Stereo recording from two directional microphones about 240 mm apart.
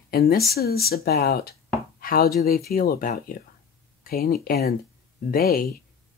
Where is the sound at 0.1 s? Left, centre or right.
Left.